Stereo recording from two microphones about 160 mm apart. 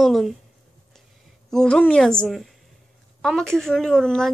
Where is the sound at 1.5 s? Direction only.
5° left (ahead or behind).